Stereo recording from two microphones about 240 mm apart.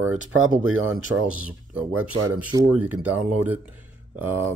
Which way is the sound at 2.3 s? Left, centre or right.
Centre.